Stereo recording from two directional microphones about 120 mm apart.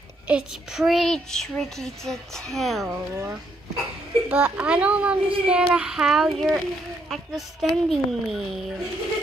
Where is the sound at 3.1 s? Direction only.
20° right (ahead or behind); by 8.8 s centre (ahead or behind).